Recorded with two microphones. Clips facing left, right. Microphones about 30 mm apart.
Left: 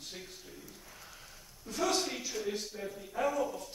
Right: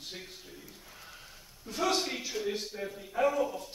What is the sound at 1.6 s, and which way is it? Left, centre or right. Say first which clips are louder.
Speech: right 2 dB; centre.